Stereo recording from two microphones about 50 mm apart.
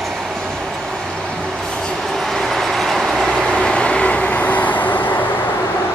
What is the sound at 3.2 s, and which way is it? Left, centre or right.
Vehicle, centre.